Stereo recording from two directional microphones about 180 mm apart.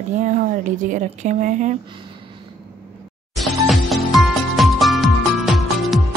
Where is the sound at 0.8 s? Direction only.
45° right (ahead or behind).